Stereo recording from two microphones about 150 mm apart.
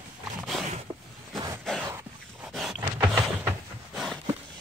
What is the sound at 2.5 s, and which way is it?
Power windows, centre (ahead or behind).